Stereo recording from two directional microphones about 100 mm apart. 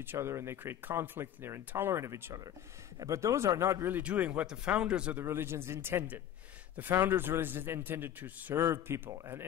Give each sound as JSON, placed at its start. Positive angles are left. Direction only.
{"t": 0.0, "sound": "speech", "side_deg": -25}
{"t": 4.0, "sound": "speech", "side_deg": -10}
{"t": 5.2, "sound": "speech", "side_deg": -25}